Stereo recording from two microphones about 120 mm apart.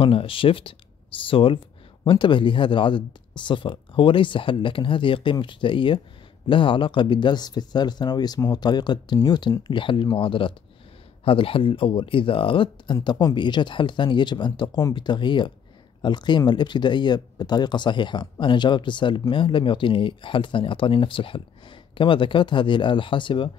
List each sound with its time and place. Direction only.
0.0 s speech: 50° left (ahead or behind)